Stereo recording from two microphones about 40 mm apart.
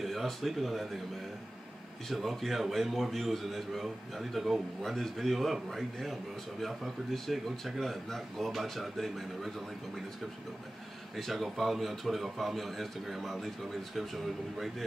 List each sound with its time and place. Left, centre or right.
0.0 s speech: centre
2.0 s a man's voice: centre
11.1 s a man's voice: centre